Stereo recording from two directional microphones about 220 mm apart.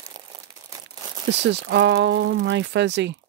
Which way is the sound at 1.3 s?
50° right (ahead or behind).